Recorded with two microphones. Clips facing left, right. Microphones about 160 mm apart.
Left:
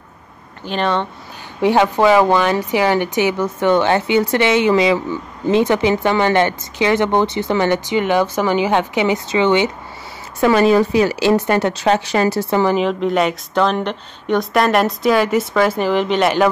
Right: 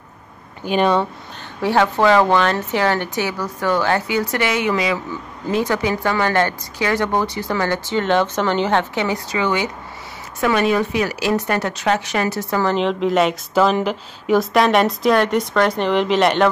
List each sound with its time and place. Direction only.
0.7 s speech: 10° right (ahead or behind)
1.6 s speech: 15° left (ahead or behind)
12.6 s speech: 5° left (ahead or behind)